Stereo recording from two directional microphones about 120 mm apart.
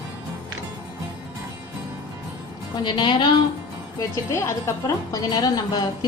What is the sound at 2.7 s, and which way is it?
Speech, 40° left (ahead or behind).